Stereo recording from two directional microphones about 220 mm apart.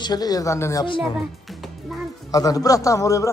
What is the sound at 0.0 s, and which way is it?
A man's voice, 20° left (ahead or behind).